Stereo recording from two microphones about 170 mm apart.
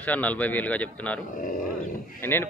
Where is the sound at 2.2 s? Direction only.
15° left (ahead or behind).